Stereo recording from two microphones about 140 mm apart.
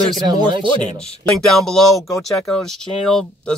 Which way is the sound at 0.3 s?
35° right (ahead or behind).